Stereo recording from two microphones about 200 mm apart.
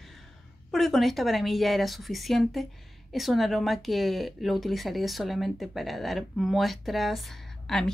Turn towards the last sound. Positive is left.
turn(degrees=0)  # may be behind; listen again after turning